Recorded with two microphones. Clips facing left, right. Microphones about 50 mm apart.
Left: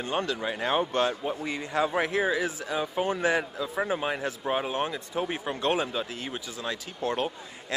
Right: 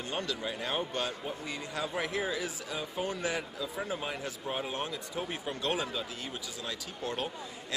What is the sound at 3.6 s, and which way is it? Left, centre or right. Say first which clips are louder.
Speech: left 7 dB; left.